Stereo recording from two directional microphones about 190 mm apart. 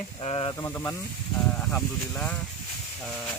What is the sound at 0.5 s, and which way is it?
Speech, 15° left (ahead or behind).